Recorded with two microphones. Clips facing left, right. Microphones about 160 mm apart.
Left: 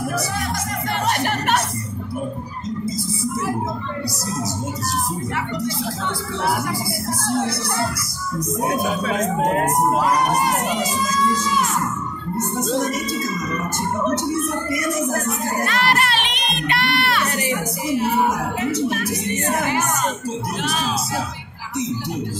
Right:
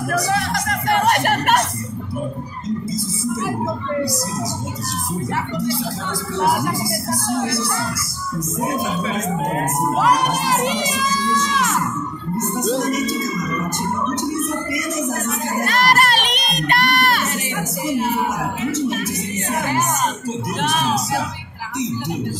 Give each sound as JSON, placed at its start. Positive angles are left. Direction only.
{"t": 0.1, "sound": "speech", "side_deg": -75}
{"t": 10.0, "sound": "speech", "side_deg": -90}
{"t": 12.6, "sound": "speech", "side_deg": 0}
{"t": 15.6, "sound": "a sound", "side_deg": -40}
{"t": 17.3, "sound": "a sound", "side_deg": 0}
{"t": 20.6, "sound": "music", "side_deg": -50}